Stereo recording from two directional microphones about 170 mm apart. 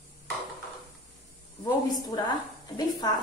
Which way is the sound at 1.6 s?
25° left (ahead or behind).